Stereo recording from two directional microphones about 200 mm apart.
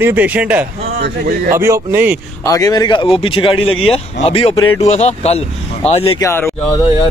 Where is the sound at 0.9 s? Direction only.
50° right (ahead or behind).